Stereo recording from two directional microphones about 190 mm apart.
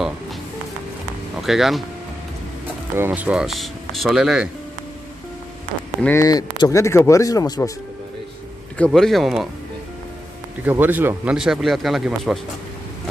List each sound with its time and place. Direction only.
1.4 s speech: centre (ahead or behind)
3.0 s speech: 10° right (ahead or behind)
5.9 s speech: 10° left (ahead or behind)
8.7 s speech: 5° left (ahead or behind)
10.6 s speech: 10° right (ahead or behind)